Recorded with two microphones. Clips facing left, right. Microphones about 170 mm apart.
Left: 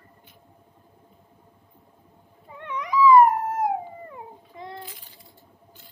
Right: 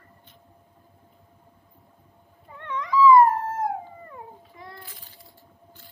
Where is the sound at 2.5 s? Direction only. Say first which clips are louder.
Right 1 dB; 15° left (ahead or behind).